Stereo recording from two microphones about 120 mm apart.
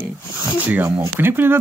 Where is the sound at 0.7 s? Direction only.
15° right (ahead or behind).